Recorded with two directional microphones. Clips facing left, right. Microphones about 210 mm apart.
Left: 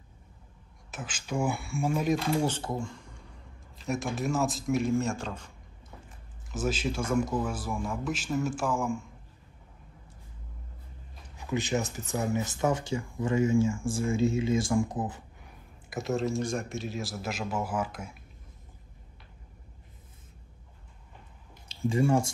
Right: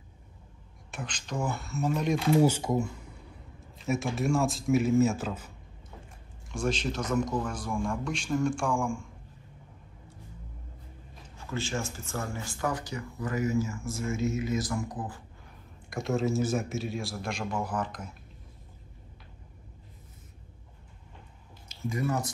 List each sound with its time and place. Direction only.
0.9 s speech: 5° left (ahead or behind)
2.4 s speech: 10° right (ahead or behind)
6.5 s speech: 5° left (ahead or behind)
11.3 s speech: 20° left (ahead or behind)
15.9 s speech: centre (ahead or behind)
21.6 s speech: 30° left (ahead or behind)